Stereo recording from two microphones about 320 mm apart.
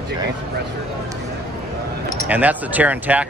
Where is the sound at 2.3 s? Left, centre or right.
Centre.